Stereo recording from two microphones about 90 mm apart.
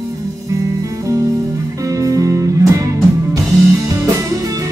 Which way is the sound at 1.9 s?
40° right (ahead or behind).